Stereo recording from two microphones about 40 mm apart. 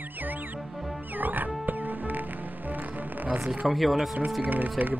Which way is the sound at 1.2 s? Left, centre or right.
Right.